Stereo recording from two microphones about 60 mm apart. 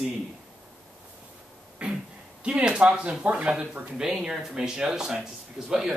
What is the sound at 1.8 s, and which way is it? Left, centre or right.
Throat clearing, centre.